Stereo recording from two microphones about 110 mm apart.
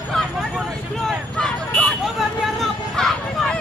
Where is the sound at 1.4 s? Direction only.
5° left (ahead or behind).